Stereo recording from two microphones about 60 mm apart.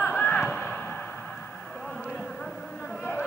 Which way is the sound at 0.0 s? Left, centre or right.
Centre.